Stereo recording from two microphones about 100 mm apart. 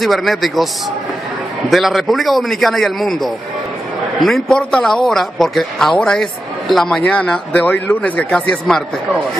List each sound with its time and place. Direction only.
0.0 s a man's voice: centre (ahead or behind)
1.7 s a man's voice: centre (ahead or behind)